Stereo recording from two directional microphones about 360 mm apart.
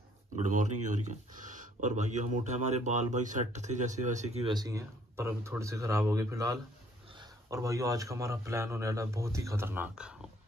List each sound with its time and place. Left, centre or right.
0.4 s speech: centre